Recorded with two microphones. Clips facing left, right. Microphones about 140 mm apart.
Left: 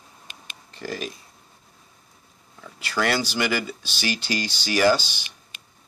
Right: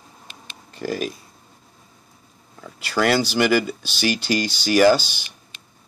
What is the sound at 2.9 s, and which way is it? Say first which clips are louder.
Speech: right 5 dB; 50° right (ahead or behind).